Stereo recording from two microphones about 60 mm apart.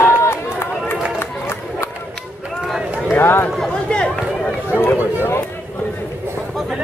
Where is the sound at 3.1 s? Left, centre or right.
Left.